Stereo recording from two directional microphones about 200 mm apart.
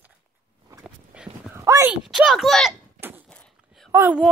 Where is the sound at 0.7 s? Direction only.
5° right (ahead or behind).